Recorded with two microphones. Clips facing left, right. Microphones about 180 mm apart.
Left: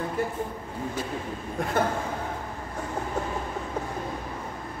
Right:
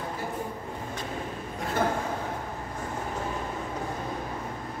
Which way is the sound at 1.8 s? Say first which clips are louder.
Left 1 dB; 55° left (ahead or behind).